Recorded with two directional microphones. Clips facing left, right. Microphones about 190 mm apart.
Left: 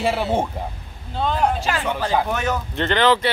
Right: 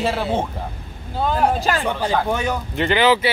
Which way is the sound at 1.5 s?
40° right (ahead or behind).